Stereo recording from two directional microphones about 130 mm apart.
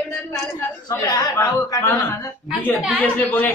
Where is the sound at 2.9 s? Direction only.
10° left (ahead or behind).